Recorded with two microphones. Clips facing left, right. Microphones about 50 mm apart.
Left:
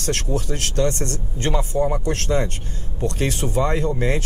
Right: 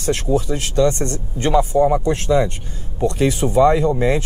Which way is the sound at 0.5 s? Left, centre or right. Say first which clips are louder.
Right 3 dB; left.